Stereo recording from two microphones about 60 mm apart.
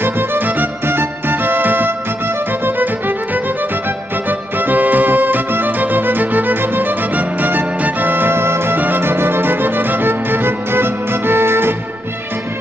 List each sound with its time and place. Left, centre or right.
0.0 s music: right
4.3 s music: right